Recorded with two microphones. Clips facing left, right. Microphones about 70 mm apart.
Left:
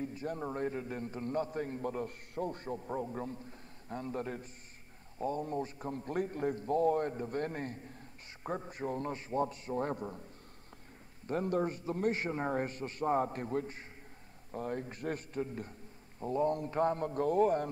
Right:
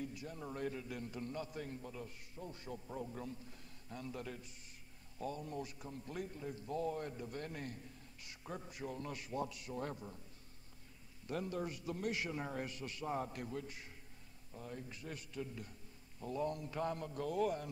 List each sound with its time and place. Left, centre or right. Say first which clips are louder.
0.0 s a sound: left 7 dB; left
0.3 s a man's voice: left 8 dB; left
11.2 s a man's voice: left 8 dB; left
14.5 s a man's voice: left 11 dB; left